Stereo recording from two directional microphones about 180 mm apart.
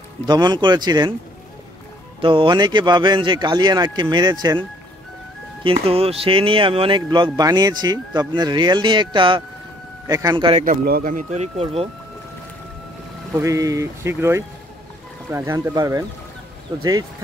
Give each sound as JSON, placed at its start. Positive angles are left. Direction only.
{"t": 0.3, "sound": "speech", "side_deg": -25}
{"t": 2.2, "sound": "speech", "side_deg": -25}
{"t": 10.6, "sound": "speech", "side_deg": -55}
{"t": 13.3, "sound": "speech", "side_deg": -15}